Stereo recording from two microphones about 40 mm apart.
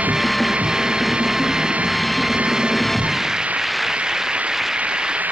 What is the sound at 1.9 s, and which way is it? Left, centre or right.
Vehicle, centre.